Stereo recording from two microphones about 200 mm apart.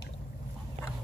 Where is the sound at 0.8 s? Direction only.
30° right (ahead or behind).